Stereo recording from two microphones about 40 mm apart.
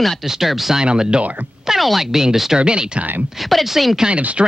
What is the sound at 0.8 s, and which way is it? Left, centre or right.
Speech, right.